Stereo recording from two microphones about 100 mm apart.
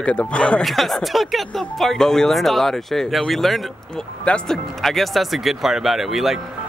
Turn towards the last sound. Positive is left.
turn(degrees=-5)  # may be behind; listen again after turning